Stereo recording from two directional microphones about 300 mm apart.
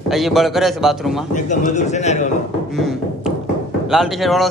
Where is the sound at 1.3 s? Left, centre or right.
Left.